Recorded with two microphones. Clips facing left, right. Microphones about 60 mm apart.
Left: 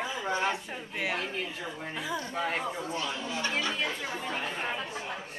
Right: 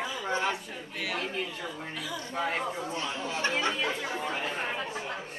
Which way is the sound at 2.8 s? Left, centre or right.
Right.